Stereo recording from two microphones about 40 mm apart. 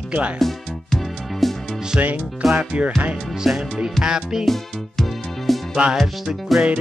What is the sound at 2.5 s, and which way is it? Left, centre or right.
Music, right.